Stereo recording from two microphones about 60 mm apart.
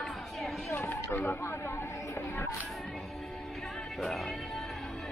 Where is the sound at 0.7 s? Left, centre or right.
Left.